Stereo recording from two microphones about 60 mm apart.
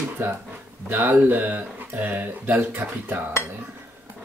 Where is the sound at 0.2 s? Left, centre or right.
Right.